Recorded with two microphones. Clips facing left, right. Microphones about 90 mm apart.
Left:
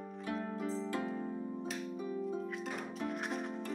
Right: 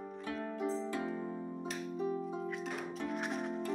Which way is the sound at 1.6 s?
Centre (ahead or behind).